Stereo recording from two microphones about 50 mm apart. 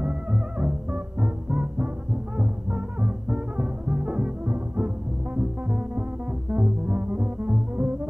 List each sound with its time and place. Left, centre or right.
0.6 s music: right
3.0 s music: centre
6.5 s music: centre
7.7 s double bass: right